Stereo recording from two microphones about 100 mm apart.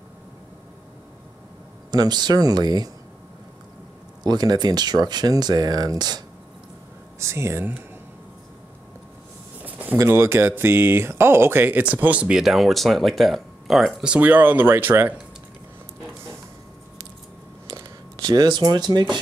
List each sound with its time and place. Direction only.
1.9 s speech: 45° right (ahead or behind)
4.2 s speech: 45° right (ahead or behind)
7.2 s speech: 25° right (ahead or behind)
9.7 s vehicle: 15° right (ahead or behind)
9.9 s speech: 25° right (ahead or behind)
17.6 s a sound: 45° right (ahead or behind)